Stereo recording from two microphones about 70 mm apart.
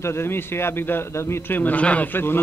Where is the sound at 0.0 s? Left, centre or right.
Left.